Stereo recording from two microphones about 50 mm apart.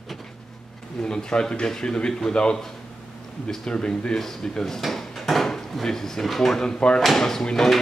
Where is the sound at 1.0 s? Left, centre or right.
Centre.